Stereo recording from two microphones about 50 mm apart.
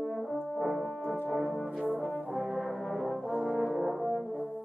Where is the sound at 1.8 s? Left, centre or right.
Centre.